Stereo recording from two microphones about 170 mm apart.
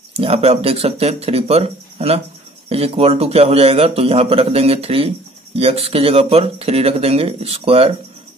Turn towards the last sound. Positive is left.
turn(degrees=-35)  # may be behind; listen again after turning